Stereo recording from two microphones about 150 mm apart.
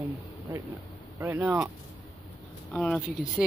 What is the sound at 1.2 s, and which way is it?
Speech, 15° right (ahead or behind).